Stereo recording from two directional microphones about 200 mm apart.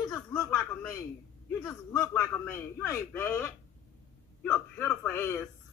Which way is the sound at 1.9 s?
10° left (ahead or behind).